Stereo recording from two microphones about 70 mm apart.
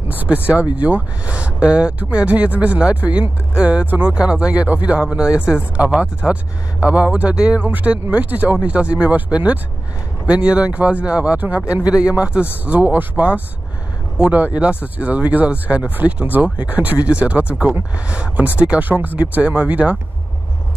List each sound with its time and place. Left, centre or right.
0.1 s speech: right